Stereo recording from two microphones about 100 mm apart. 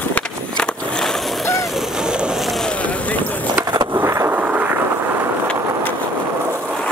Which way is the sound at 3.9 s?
30° right (ahead or behind).